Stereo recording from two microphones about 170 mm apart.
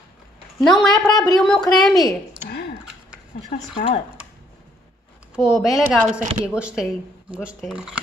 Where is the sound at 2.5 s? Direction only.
70° left (ahead or behind).